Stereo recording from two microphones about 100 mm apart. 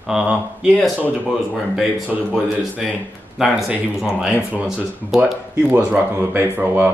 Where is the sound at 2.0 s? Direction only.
10° right (ahead or behind).